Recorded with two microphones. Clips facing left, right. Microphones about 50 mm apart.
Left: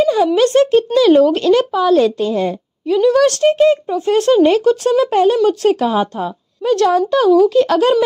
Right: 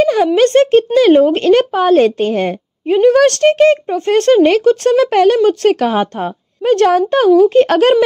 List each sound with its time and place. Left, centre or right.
0.0 s a sound: right
0.4 s speech: right
5.4 s speech: right